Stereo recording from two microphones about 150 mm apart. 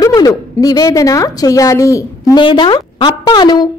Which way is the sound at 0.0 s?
25° left (ahead or behind).